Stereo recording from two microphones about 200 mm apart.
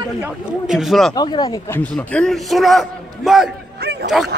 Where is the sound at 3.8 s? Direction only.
55° right (ahead or behind).